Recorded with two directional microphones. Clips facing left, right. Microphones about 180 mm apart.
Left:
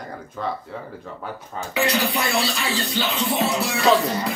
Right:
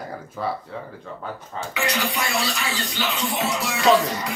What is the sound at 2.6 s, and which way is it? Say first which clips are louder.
Speech: left 3 dB; 25° left (ahead or behind).